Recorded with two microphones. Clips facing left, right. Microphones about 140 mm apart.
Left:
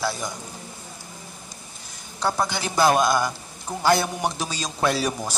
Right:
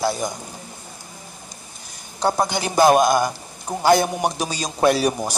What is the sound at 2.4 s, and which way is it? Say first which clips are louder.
Speech: right 4 dB; 15° right (ahead or behind).